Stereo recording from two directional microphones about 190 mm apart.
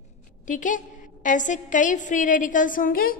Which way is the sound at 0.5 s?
40° left (ahead or behind).